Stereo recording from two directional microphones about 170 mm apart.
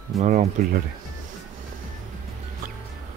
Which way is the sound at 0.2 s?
45° right (ahead or behind).